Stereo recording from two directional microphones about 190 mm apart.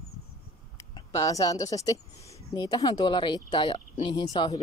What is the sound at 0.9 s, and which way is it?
A woman's voice, 20° left (ahead or behind).